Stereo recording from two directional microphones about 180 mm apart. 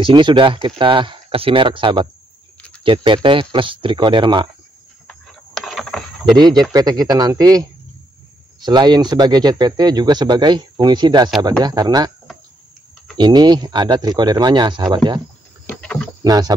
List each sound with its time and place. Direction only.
0.0 s speech: 25° right (ahead or behind)
5.0 s a sound: centre (ahead or behind)
6.3 s speech: 25° right (ahead or behind)
8.6 s speech: 25° right (ahead or behind)
13.2 s speech: 25° right (ahead or behind)
15.7 s speech: 5° left (ahead or behind)
16.2 s speech: 20° right (ahead or behind)